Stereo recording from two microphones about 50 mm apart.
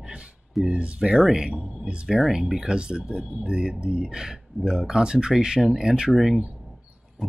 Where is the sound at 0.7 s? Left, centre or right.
Right; by 2.5 s centre.